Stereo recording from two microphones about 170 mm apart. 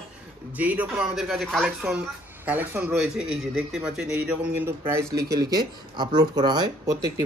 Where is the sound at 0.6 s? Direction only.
10° right (ahead or behind).